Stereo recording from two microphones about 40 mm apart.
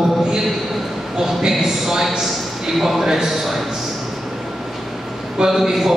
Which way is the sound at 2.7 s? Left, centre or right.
Centre.